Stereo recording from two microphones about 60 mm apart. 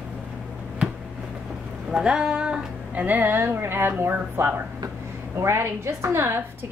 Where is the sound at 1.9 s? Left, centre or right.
Centre.